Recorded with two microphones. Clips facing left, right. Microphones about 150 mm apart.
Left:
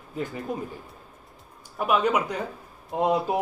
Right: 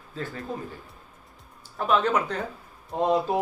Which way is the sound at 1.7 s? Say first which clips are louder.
Even; 10° left (ahead or behind).